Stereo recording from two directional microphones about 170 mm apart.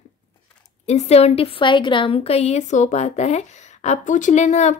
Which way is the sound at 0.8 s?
40° left (ahead or behind).